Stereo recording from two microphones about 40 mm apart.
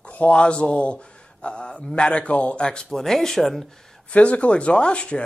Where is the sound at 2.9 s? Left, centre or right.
Centre.